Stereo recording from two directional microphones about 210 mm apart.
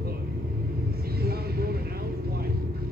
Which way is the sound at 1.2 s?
45° right (ahead or behind).